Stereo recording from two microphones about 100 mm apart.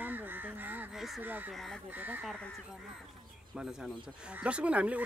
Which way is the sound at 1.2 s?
20° right (ahead or behind).